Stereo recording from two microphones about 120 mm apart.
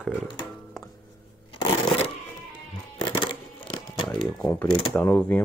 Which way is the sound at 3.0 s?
40° left (ahead or behind).